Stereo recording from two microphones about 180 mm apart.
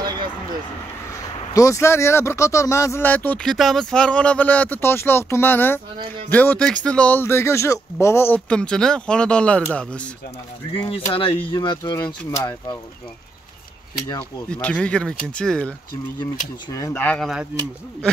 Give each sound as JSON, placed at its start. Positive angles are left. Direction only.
{"t": 0.0, "sound": "a sound", "side_deg": -25}
{"t": 1.5, "sound": "speech", "side_deg": 15}
{"t": 10.7, "sound": "speech", "side_deg": 30}
{"t": 14.5, "sound": "speech", "side_deg": 5}
{"t": 16.7, "sound": "speech", "side_deg": 15}